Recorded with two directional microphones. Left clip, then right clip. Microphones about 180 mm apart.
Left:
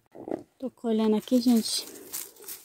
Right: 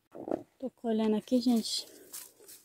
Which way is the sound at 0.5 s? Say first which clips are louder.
Left 8 dB; 10° left (ahead or behind).